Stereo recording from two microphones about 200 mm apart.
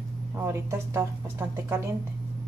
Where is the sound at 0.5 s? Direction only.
15° right (ahead or behind).